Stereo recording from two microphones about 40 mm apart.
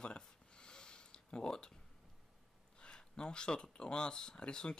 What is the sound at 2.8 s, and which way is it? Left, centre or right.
Speech, left.